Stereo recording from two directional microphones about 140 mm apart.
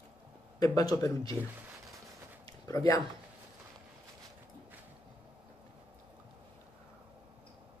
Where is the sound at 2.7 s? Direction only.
25° left (ahead or behind).